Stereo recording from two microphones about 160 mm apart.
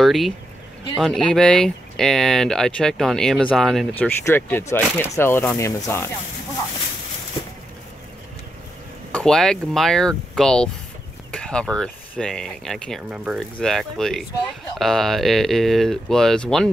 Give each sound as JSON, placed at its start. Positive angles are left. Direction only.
{"t": 0.0, "sound": "speech", "side_deg": 0}
{"t": 9.1, "sound": "speech", "side_deg": 5}